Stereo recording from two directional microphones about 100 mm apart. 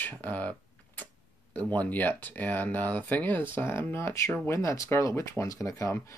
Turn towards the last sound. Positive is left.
turn(degrees=30)  # may be behind; listen again after turning